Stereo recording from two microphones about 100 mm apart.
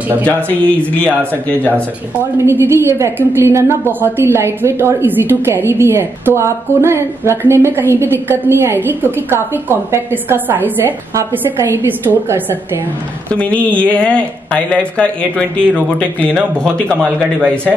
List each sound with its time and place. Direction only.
0.2 s speech: 15° left (ahead or behind)
1.7 s a woman's voice: 20° right (ahead or behind)
13.3 s speech: 15° left (ahead or behind)